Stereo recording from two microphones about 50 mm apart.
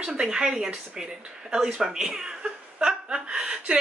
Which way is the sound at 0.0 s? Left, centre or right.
Centre.